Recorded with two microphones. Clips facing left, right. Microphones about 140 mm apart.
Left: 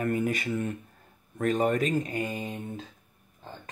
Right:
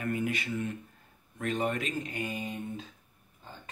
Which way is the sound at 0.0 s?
45° left (ahead or behind).